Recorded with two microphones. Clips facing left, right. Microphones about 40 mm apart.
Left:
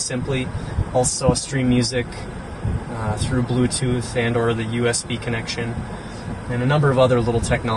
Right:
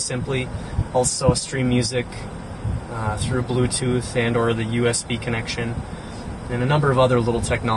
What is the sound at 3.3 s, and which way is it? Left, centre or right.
Speech, centre.